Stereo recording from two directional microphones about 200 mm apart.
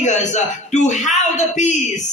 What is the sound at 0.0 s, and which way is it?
Speech, 35° left (ahead or behind).